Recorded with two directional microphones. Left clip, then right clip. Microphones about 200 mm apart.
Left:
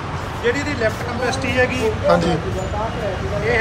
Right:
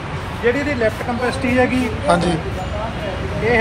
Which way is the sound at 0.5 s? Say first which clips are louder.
Right 2 dB; 35° right (ahead or behind).